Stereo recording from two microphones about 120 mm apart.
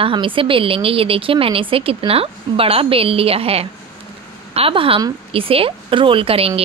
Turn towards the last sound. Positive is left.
turn(degrees=-55)  # may be behind; listen again after turning